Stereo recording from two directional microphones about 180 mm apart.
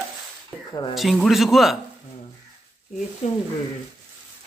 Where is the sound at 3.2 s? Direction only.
35° left (ahead or behind).